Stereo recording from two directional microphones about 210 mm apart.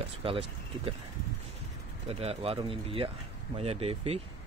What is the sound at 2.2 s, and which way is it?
Speech, 25° right (ahead or behind).